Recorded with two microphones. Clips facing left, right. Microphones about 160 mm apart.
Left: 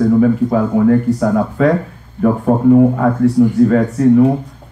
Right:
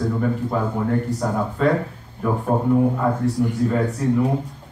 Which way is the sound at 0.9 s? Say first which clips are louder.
Left 9 dB; 65° left (ahead or behind).